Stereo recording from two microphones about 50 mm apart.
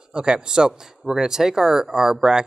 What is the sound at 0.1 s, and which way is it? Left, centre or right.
Speech, centre.